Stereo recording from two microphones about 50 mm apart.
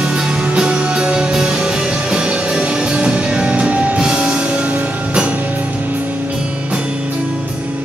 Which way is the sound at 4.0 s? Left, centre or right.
Centre.